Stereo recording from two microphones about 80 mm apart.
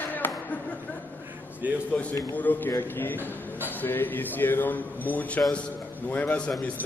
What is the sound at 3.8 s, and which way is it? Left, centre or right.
A man's voice, left.